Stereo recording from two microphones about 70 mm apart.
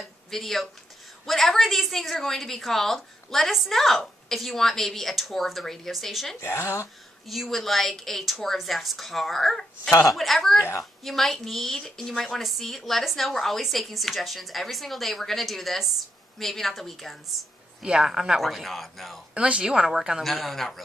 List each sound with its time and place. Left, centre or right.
0.0 s a sound: centre
1.2 s a woman's voice: centre
6.4 s speech: left
7.2 s a woman's voice: centre
19.3 s a woman's voice: centre